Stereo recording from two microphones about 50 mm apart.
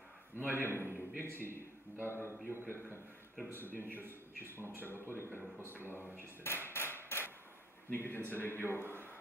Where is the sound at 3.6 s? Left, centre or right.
Right.